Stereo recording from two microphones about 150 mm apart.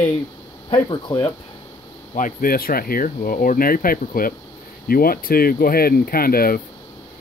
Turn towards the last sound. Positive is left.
turn(degrees=80)